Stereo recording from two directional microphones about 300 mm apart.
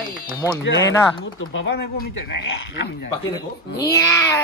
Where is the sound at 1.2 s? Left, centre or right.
Left.